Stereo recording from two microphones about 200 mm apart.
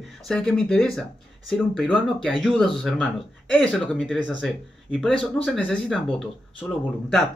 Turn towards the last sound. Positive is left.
turn(degrees=5)  # may be behind; listen again after turning